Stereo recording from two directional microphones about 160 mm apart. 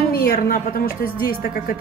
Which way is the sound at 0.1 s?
70° left (ahead or behind).